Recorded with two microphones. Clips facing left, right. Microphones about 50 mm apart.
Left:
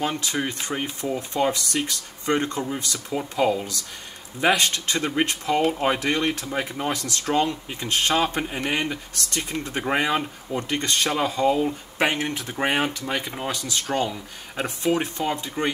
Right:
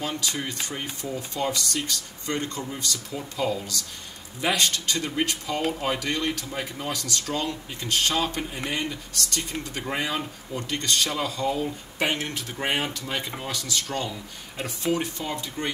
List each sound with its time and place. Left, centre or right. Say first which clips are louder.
0.0 s speech: left 4 dB; left
12.1 s speech: left 3 dB; left